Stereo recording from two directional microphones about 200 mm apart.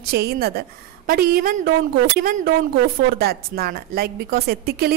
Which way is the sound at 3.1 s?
50° right (ahead or behind).